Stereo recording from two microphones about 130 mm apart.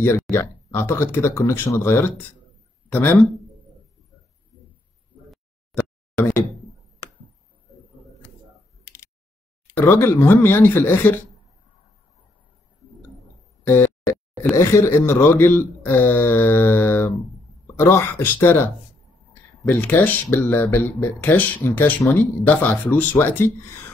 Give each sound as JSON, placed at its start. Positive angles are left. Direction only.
{"t": 0.0, "sound": "speech", "side_deg": 20}
{"t": 9.8, "sound": "speech", "side_deg": 15}
{"t": 13.7, "sound": "a sound", "side_deg": 15}
{"t": 14.7, "sound": "speech", "side_deg": 20}
{"t": 19.7, "sound": "speech", "side_deg": 10}